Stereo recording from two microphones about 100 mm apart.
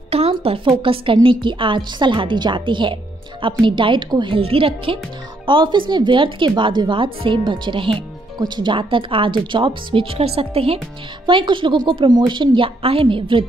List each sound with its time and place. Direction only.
0.1 s a woman's voice: 70° right (ahead or behind); by 4.4 s 55° right (ahead or behind)
4.4 s speech: 65° right (ahead or behind)
11.2 s speech: 55° right (ahead or behind)